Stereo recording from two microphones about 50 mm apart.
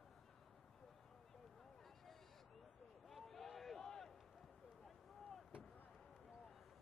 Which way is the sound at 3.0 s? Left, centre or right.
Centre.